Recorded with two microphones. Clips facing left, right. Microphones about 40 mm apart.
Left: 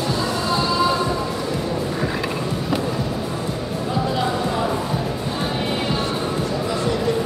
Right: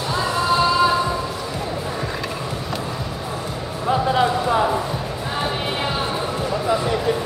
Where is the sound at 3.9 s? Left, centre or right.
Right.